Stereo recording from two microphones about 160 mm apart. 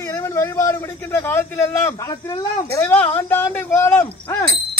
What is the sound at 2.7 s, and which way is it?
Speech, 10° left (ahead or behind).